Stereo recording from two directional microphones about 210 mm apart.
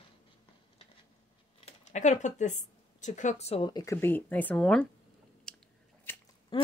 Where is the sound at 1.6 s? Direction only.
35° left (ahead or behind); by 4.9 s 5° left (ahead or behind).